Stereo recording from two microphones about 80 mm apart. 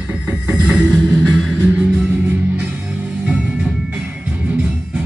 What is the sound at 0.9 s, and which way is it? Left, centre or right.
Music, centre.